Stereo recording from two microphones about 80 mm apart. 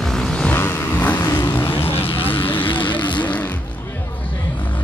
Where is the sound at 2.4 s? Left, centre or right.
Left.